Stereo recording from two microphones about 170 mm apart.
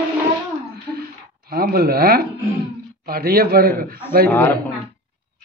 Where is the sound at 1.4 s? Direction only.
65° right (ahead or behind).